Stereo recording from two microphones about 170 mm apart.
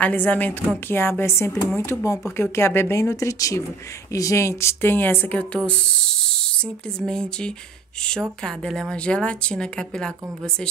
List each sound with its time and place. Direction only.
0.0 s a woman's voice: 10° left (ahead or behind)